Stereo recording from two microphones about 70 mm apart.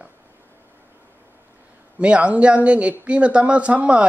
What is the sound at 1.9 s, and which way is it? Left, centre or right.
Speech, centre.